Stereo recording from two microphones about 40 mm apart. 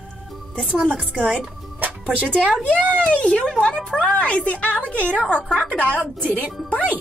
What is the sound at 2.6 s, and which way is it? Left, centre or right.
Speech, left.